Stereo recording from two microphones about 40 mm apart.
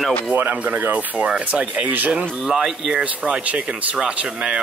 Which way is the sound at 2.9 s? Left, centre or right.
Right.